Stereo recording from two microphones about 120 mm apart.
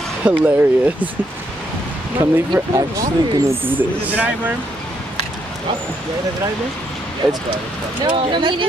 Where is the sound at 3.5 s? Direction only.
45° right (ahead or behind).